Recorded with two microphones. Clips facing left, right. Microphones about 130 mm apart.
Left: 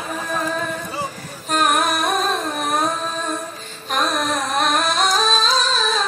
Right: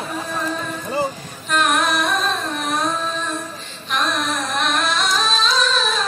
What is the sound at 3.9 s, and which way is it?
Music, 45° left (ahead or behind).